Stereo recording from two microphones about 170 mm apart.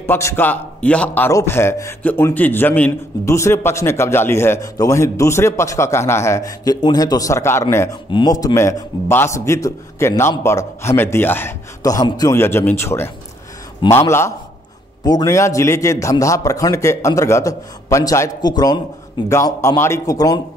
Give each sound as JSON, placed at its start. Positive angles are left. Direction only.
{"t": 0.0, "sound": "a man's voice", "side_deg": 15}